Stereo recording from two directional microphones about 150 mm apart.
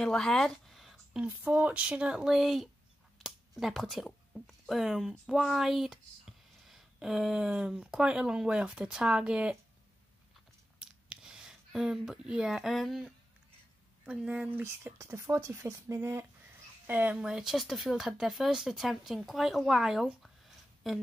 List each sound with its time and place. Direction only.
0.0 s speech: 5° left (ahead or behind)
10.8 s a sound: 5° right (ahead or behind)
14.0 s speech: 5° right (ahead or behind)
14.6 s speech: 15° right (ahead or behind); by 21.0 s centre (ahead or behind)